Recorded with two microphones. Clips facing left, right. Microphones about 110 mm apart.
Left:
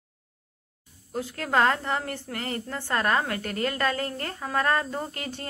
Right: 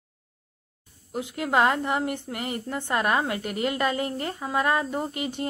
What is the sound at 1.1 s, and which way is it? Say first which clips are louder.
A woman's voice: right 2 dB; 15° right (ahead or behind).